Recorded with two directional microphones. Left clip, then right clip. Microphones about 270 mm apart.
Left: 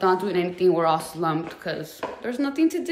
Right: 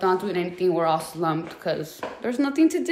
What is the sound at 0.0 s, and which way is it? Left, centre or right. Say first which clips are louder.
A woman's voice: left 1 dB; centre.